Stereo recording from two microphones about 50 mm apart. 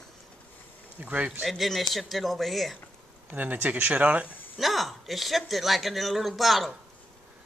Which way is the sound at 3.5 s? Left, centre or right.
Right.